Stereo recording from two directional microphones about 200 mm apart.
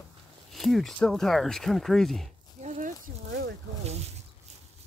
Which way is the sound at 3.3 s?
60° right (ahead or behind).